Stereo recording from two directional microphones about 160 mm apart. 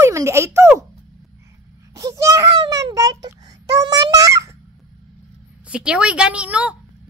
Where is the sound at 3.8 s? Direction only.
25° right (ahead or behind).